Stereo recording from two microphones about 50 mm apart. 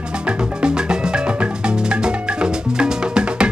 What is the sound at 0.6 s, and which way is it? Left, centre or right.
Music, centre.